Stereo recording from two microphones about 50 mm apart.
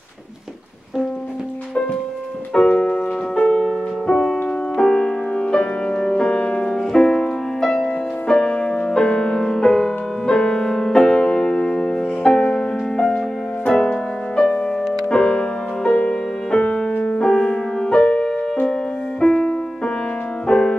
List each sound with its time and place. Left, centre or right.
2.5 s music: centre
4.1 s music: centre